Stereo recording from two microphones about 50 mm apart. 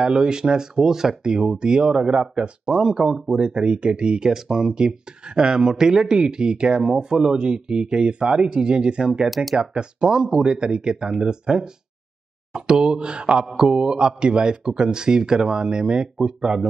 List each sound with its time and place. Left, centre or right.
0.0 s speech: centre
9.3 s speech: centre
9.8 s speech: centre